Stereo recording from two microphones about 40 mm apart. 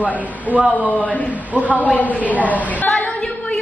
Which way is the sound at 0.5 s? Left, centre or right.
Right.